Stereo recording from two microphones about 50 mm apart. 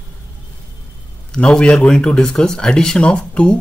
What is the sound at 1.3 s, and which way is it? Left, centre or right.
Speech, centre.